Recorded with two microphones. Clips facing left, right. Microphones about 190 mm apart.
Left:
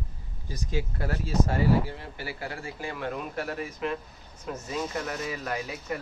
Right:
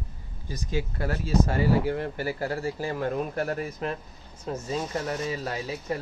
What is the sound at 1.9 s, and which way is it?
Speech, 50° right (ahead or behind).